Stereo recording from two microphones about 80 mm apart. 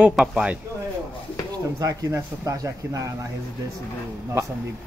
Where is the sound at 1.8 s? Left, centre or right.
Right.